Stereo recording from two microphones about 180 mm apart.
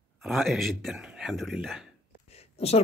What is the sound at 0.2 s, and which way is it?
Speech, centre (ahead or behind).